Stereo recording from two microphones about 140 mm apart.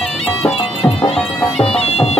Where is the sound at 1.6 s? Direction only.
45° left (ahead or behind).